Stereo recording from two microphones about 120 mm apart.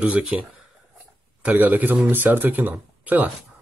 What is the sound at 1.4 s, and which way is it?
Speech, 15° right (ahead or behind).